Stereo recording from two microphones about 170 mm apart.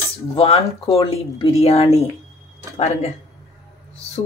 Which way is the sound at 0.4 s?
35° left (ahead or behind).